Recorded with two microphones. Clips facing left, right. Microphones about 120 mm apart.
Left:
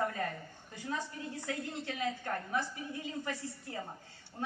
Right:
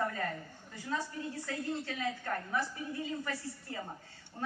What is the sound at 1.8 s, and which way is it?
Speech, 20° left (ahead or behind).